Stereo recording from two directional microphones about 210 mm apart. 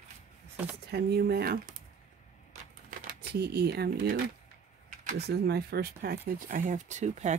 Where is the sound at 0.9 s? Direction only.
45° right (ahead or behind).